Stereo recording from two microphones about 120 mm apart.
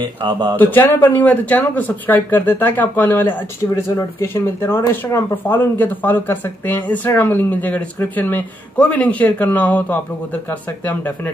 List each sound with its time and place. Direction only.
0.0 s speech: 40° right (ahead or behind)
0.6 s speech: 15° left (ahead or behind)